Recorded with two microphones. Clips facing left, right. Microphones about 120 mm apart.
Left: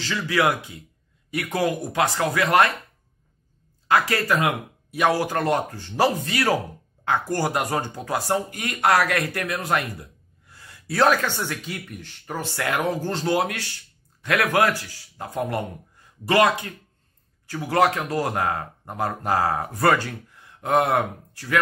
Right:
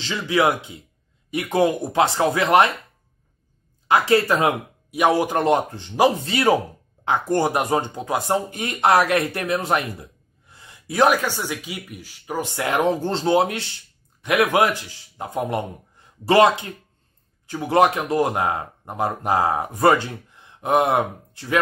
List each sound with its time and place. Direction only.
0.0 s speech: 20° right (ahead or behind)
3.8 s speech: 20° right (ahead or behind)
4.9 s speech: 15° right (ahead or behind)